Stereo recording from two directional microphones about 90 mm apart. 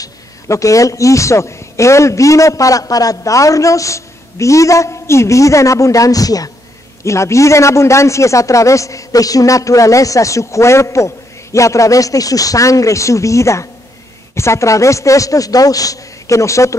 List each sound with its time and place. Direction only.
0.0 s a man's voice: 35° left (ahead or behind)